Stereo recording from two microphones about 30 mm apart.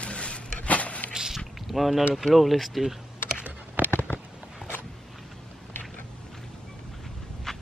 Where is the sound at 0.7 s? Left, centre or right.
Left.